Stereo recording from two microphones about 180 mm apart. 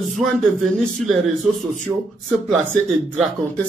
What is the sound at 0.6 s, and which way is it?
A man's voice, centre (ahead or behind).